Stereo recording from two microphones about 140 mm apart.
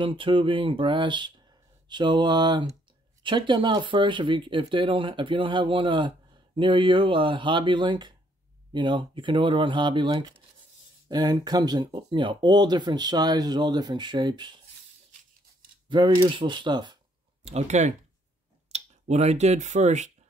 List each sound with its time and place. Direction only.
0.0 s speech: 35° right (ahead or behind)
15.9 s speech: 35° right (ahead or behind)
17.5 s speech: 50° right (ahead or behind)